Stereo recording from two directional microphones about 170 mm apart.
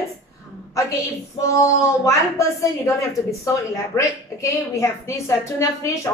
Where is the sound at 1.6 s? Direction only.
20° left (ahead or behind).